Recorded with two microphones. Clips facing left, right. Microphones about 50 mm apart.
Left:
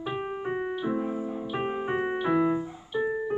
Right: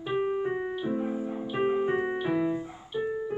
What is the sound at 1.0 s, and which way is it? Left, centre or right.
Music, centre.